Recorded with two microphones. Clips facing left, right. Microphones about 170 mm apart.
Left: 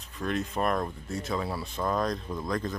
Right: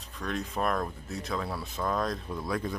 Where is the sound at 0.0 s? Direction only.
Centre (ahead or behind).